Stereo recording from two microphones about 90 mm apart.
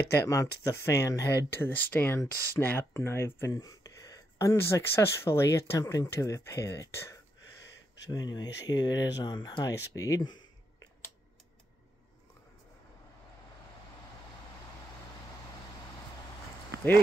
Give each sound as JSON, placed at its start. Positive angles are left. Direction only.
{"t": 0.1, "sound": "speech", "side_deg": 35}
{"t": 1.5, "sound": "speech", "side_deg": 20}
{"t": 3.5, "sound": "speech", "side_deg": 40}
{"t": 5.8, "sound": "speech", "side_deg": 40}
{"t": 8.1, "sound": "speech", "side_deg": 50}
{"t": 9.7, "sound": "speech", "side_deg": 40}
{"t": 10.2, "sound": "a sound", "side_deg": 50}